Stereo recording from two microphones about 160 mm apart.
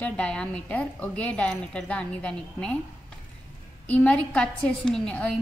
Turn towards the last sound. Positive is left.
turn(degrees=5)  # may be behind; listen again after turning